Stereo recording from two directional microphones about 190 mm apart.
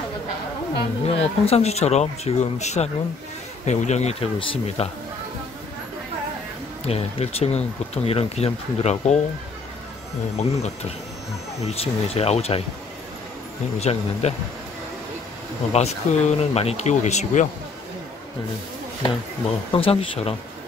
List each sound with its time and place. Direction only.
0.7 s speech: 30° left (ahead or behind)
6.9 s speech: 30° left (ahead or behind)
11.6 s speech: 30° left (ahead or behind)
13.7 s speech: 35° left (ahead or behind)
15.7 s speech: 35° left (ahead or behind)
19.7 s speech: 30° left (ahead or behind)